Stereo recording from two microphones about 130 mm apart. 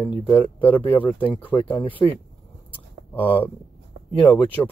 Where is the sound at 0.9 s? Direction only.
40° left (ahead or behind).